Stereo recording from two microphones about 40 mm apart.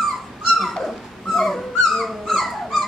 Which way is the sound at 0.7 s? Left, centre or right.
Centre.